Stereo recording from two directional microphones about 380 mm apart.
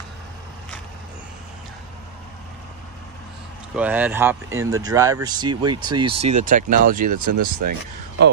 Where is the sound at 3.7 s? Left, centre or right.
Centre; by 6.9 s right.